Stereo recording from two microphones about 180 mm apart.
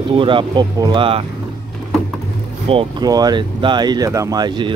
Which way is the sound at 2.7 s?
25° right (ahead or behind).